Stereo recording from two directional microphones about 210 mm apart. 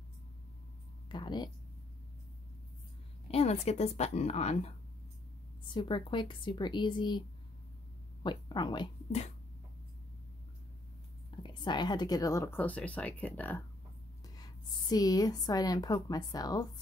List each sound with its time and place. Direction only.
1.0 s speech: 20° left (ahead or behind)
3.3 s a woman's voice: 30° left (ahead or behind)
11.2 s a woman's voice: 20° left (ahead or behind); by 13.6 s 5° left (ahead or behind)
14.2 s a woman's voice: 20° left (ahead or behind)